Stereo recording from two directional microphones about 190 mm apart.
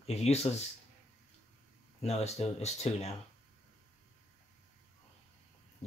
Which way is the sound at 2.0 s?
35° left (ahead or behind).